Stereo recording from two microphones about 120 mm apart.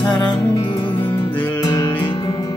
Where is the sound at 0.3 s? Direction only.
40° left (ahead or behind).